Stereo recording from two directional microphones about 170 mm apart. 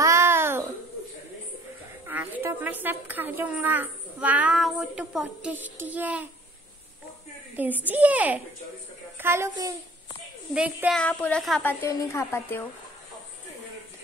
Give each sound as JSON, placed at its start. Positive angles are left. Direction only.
{"t": 0.0, "sound": "babbling", "side_deg": -15}
{"t": 2.0, "sound": "a woman's voice", "side_deg": -10}
{"t": 7.5, "sound": "a woman's voice", "side_deg": -10}
{"t": 10.5, "sound": "speech", "side_deg": -5}
{"t": 11.0, "sound": "speech", "side_deg": 5}
{"t": 11.6, "sound": "a woman's voice", "side_deg": 15}